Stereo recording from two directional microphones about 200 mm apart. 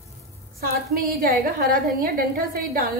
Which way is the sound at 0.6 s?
45° right (ahead or behind).